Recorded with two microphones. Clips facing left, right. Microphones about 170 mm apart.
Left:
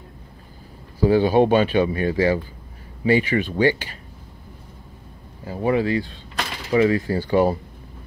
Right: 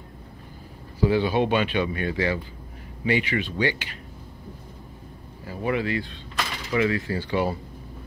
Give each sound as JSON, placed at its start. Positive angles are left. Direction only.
{"t": 1.0, "sound": "speech", "side_deg": 40}
{"t": 5.5, "sound": "speech", "side_deg": 30}